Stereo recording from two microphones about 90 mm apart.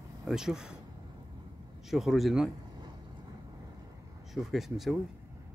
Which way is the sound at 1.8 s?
5° right (ahead or behind).